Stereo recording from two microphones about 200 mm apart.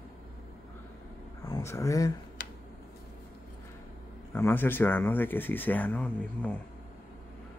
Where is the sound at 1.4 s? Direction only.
15° left (ahead or behind).